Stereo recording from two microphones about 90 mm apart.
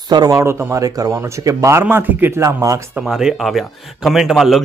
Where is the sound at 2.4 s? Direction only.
35° right (ahead or behind).